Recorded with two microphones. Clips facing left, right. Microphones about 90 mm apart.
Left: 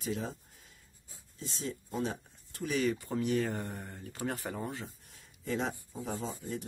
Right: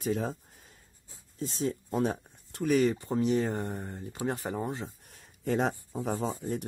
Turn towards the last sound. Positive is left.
turn(degrees=-65)  # may be behind; listen again after turning